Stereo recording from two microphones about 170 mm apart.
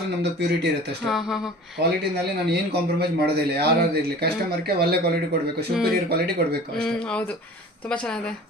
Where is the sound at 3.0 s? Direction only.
70° right (ahead or behind).